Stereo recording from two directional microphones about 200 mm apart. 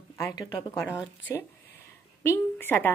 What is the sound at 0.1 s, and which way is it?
Speech, 20° left (ahead or behind).